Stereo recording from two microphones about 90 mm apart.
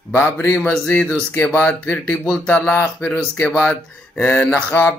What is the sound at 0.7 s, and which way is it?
Speech, 20° left (ahead or behind).